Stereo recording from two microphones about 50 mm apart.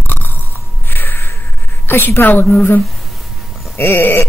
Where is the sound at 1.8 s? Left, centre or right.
Left.